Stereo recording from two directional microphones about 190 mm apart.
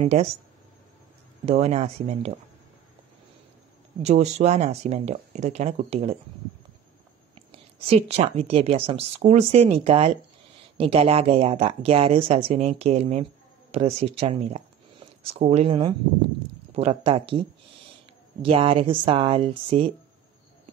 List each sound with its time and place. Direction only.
0.0 s speech: 35° right (ahead or behind)
1.4 s speech: 35° right (ahead or behind)
4.0 s speech: 35° right (ahead or behind)
7.3 s a woman's voice: 30° right (ahead or behind)